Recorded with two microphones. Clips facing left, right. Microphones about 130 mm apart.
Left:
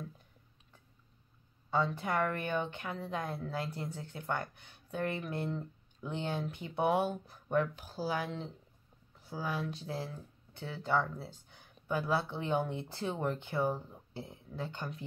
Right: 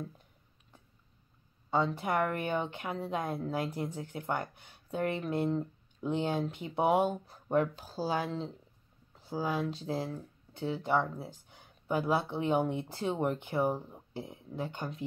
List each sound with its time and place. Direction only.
1.7 s a woman's voice: 20° right (ahead or behind)